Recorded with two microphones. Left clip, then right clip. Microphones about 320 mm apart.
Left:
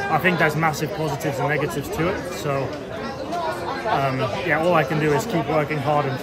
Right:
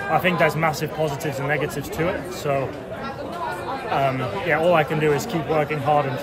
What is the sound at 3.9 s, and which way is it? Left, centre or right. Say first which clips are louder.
Speech: even; centre.